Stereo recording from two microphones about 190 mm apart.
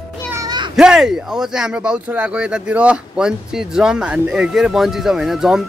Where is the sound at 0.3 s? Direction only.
20° right (ahead or behind).